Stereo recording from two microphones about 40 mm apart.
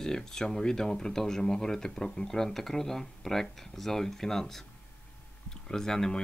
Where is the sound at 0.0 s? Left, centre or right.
Centre.